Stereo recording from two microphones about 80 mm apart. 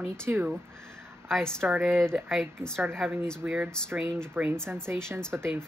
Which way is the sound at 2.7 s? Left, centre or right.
Right.